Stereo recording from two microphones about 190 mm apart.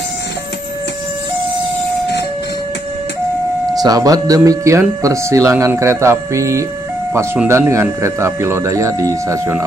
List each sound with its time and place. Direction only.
3.7 s speech: 20° right (ahead or behind)